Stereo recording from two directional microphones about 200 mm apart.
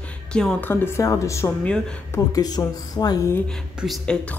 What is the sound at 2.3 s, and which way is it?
Speech, 20° left (ahead or behind).